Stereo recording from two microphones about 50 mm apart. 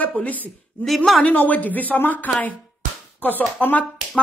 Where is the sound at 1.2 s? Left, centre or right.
Left.